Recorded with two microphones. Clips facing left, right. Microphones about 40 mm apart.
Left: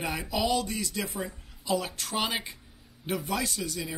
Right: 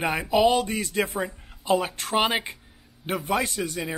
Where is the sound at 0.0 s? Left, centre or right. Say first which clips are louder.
Right 9 dB; right.